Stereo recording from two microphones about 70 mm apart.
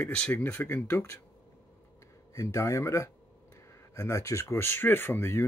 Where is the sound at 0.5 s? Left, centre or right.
Left.